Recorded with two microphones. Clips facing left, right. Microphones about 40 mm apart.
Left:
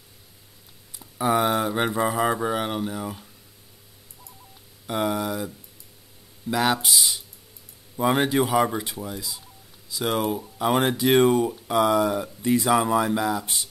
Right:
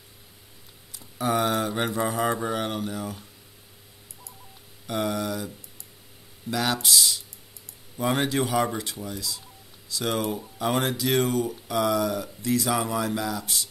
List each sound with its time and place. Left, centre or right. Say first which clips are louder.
0.9 s speech: left 3 dB; centre
4.8 s speech: left 2 dB; centre
6.5 s speech: left 2 dB; centre
10.9 s speech: left 6 dB; left